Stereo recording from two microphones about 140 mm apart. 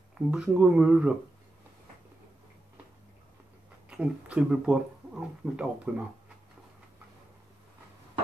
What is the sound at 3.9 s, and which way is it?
Speech, 10° right (ahead or behind).